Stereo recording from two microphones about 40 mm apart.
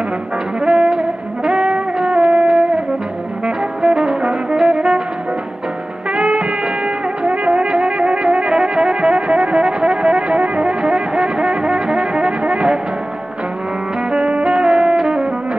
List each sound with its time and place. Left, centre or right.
0.6 s music: centre
6.1 s music: right
14.1 s music: right